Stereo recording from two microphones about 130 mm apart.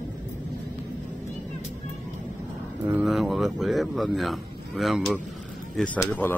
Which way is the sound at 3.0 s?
Centre (ahead or behind).